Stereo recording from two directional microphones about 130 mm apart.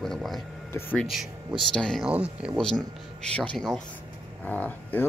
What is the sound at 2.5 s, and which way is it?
Speech, 5° left (ahead or behind).